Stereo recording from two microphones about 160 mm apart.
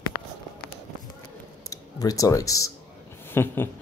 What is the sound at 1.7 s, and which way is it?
Speech, 20° left (ahead or behind).